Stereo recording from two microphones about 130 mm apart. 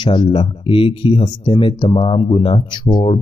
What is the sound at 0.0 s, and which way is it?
Speech, 40° left (ahead or behind).